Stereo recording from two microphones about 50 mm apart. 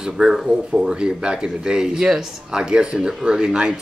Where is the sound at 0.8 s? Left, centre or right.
Centre.